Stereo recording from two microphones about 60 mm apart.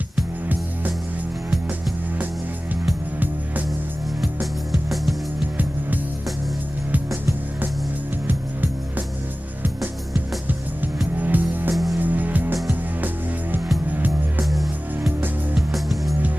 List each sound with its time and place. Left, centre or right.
4.2 s music: centre
8.3 s music: right
11.1 s music: right
11.7 s music: centre
12.0 s music: right
14.4 s music: centre
15.7 s music: centre